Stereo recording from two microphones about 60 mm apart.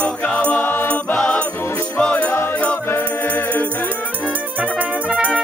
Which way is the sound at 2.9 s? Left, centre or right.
Left.